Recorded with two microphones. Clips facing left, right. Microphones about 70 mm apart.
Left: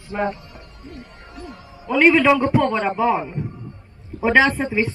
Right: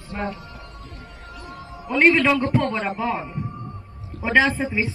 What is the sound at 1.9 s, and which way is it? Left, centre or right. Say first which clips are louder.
A man's voice: left 3 dB; centre.